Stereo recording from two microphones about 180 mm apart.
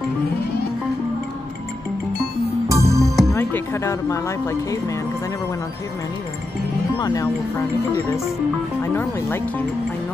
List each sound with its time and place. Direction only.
2.7 s music: 15° right (ahead or behind)
3.0 s music: centre (ahead or behind)
3.3 s speech: 15° left (ahead or behind)
7.0 s speech: 20° left (ahead or behind)
8.8 s speech: 15° left (ahead or behind)